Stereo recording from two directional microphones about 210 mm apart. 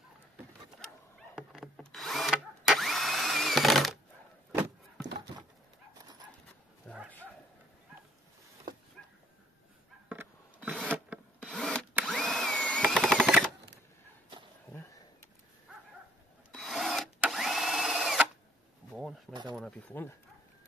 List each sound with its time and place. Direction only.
0.7 s drill: centre (ahead or behind)
5.0 s a sound: 60° right (ahead or behind)
6.8 s dog: 5° left (ahead or behind)
10.0 s filing: 5° right (ahead or behind)
11.3 s wood: 5° left (ahead or behind)
11.9 s drill: centre (ahead or behind)
16.5 s drill: centre (ahead or behind)
19.5 s a sound: 5° left (ahead or behind)